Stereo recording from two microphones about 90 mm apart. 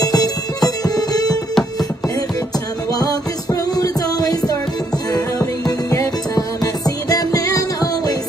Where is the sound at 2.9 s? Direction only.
45° left (ahead or behind).